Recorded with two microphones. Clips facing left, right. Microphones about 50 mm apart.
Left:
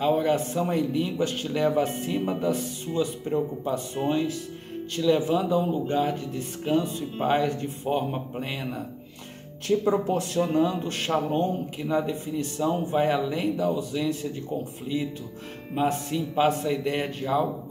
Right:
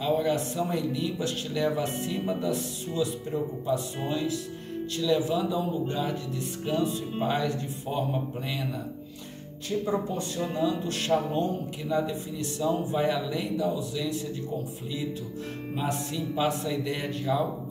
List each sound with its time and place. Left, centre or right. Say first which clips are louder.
0.0 s speech: left 3 dB; left
2.2 s speech: left 2 dB; left
9.7 s speech: left 6 dB; left
10.5 s speech: left 3 dB; left
15.7 s speech: left 6 dB; left